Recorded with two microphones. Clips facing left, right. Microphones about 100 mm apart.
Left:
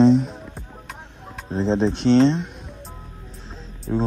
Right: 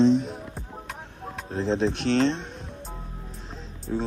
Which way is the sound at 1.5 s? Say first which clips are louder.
Left 4 dB; 30° left (ahead or behind).